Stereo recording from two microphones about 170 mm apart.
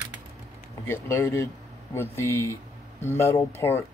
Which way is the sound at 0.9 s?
15° left (ahead or behind).